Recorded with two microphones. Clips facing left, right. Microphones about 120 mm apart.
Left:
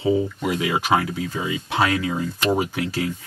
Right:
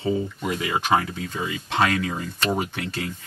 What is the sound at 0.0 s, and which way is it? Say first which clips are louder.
Speech: left 4 dB; 5° left (ahead or behind).